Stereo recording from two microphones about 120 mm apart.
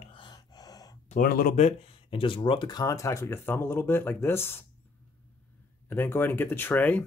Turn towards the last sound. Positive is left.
turn(degrees=15)  # may be behind; listen again after turning